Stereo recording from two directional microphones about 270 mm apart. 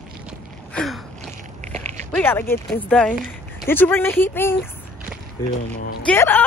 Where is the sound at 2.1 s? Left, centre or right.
Centre.